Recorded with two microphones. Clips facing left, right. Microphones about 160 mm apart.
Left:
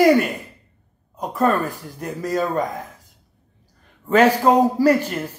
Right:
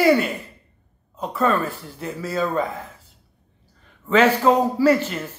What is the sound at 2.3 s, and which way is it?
Speech, 15° left (ahead or behind).